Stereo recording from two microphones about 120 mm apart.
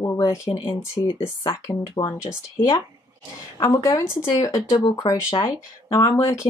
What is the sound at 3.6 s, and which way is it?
Speech, 30° left (ahead or behind).